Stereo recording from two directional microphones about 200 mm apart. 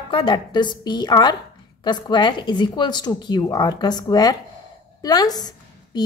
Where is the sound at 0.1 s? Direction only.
25° left (ahead or behind).